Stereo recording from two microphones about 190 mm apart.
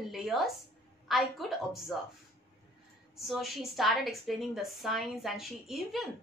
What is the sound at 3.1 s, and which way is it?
A woman's voice, centre (ahead or behind).